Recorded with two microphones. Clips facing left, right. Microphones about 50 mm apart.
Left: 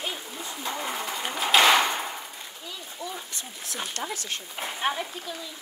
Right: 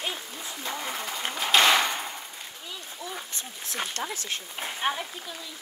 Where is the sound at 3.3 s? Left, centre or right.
Right.